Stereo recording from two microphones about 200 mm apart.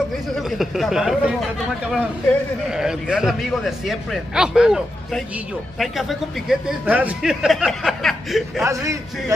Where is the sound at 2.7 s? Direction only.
5° right (ahead or behind).